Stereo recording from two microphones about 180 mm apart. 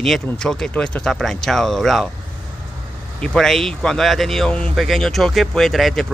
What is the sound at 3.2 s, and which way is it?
Speech, 5° left (ahead or behind).